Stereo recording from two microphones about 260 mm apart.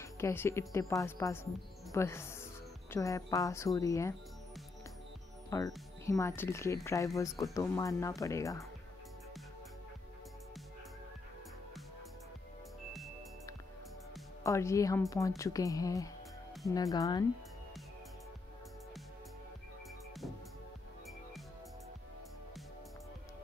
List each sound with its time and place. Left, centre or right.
0.0 s speech: centre
5.5 s speech: centre
14.4 s speech: centre